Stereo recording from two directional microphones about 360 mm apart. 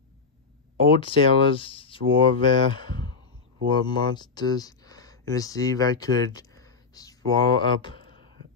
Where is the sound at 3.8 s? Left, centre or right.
Centre.